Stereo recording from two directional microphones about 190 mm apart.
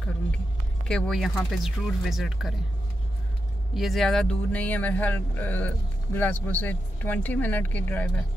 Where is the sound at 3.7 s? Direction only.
Centre (ahead or behind).